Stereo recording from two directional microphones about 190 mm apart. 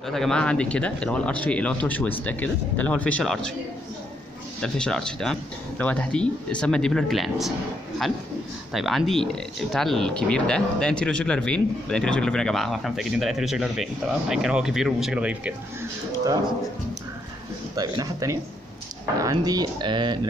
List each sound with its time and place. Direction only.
0.1 s speech: 5° left (ahead or behind)
4.6 s speech: 5° left (ahead or behind)
8.7 s speech: centre (ahead or behind)
17.7 s speech: 20° right (ahead or behind)